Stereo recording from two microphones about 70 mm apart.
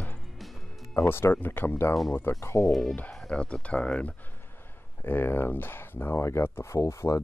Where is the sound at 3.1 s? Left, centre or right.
Centre.